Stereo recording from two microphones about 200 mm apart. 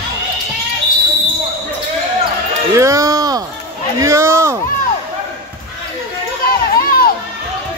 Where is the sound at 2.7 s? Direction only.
15° right (ahead or behind).